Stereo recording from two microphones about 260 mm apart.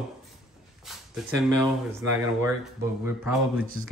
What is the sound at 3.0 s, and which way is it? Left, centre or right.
Speech, centre.